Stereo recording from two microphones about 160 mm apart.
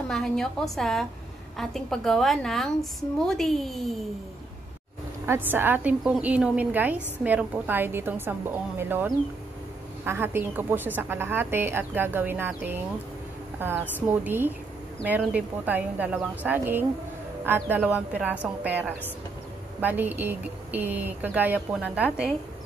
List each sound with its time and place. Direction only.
0.1 s a woman's voice: 5° left (ahead or behind)
5.2 s a woman's voice: 15° right (ahead or behind)
14.2 s a woman's voice: 10° right (ahead or behind)